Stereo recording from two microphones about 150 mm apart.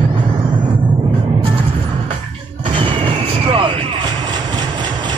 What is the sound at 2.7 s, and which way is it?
Vehicle, 35° right (ahead or behind).